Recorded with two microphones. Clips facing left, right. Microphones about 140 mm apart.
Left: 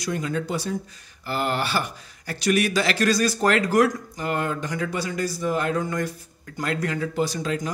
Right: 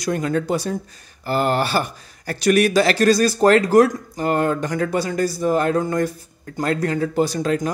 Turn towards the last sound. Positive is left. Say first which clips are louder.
# right 6 dB
turn(degrees=-45)  # may be behind; listen again after turning